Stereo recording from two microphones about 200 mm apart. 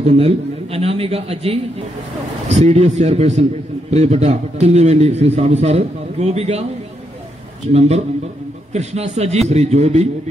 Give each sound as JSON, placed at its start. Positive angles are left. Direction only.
{"t": 0.0, "sound": "a man's voice", "side_deg": -30}
{"t": 7.6, "sound": "a man's voice", "side_deg": -35}